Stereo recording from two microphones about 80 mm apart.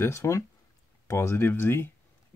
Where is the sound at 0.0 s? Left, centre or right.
Left.